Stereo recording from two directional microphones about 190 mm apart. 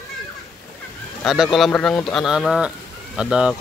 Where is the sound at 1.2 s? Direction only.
Centre (ahead or behind).